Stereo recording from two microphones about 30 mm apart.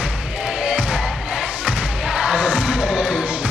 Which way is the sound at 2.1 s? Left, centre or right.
Right.